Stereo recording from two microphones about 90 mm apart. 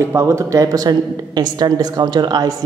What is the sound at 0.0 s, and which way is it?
Speech, 30° right (ahead or behind).